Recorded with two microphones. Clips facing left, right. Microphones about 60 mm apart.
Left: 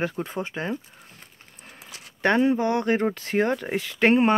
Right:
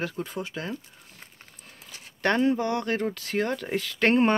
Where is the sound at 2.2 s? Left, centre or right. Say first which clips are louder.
Left 3 dB; centre.